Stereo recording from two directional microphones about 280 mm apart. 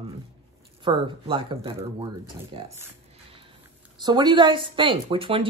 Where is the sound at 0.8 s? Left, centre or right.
Centre.